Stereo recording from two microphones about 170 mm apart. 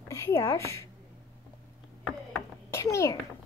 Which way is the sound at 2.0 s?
10° left (ahead or behind).